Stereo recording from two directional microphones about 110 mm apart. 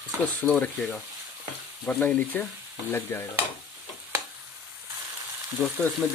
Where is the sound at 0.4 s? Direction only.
10° left (ahead or behind).